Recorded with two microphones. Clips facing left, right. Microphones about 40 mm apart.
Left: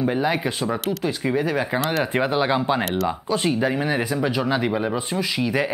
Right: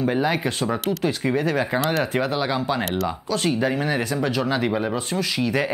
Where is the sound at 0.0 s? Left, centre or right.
Centre.